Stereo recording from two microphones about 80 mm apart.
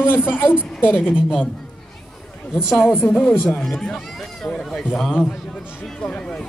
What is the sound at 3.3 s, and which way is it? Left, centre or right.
Speech, left.